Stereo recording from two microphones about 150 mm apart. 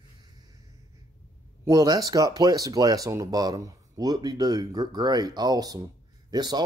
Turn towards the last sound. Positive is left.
turn(degrees=-25)  # may be behind; listen again after turning